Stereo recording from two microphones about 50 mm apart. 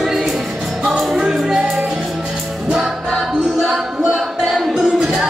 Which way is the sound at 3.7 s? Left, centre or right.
Centre.